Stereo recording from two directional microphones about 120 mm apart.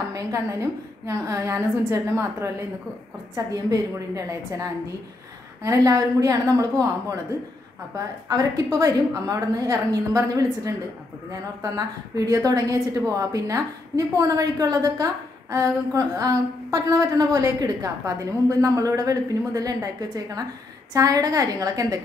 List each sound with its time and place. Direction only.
0.1 s a woman's voice: 25° right (ahead or behind)
4.1 s a woman's voice: 25° right (ahead or behind)
12.3 s a woman's voice: 30° right (ahead or behind)